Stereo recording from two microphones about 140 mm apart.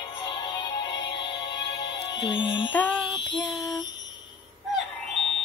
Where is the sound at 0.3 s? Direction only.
35° left (ahead or behind).